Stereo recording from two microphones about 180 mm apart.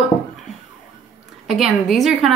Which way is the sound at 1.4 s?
Centre (ahead or behind).